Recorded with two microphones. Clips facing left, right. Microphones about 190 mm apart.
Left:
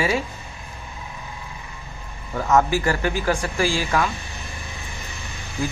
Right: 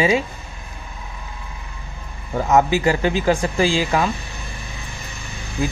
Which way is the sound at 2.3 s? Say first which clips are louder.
Right 2 dB; 20° right (ahead or behind).